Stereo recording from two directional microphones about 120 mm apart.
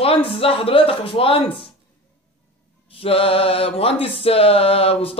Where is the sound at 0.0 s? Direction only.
50° left (ahead or behind).